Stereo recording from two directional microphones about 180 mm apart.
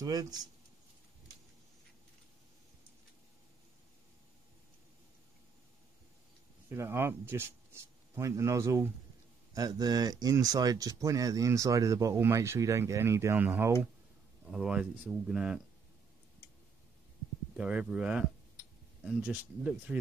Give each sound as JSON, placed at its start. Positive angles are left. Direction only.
{"t": 0.0, "sound": "speech", "side_deg": -20}
{"t": 6.7, "sound": "speech", "side_deg": -15}
{"t": 17.6, "sound": "speech", "side_deg": -5}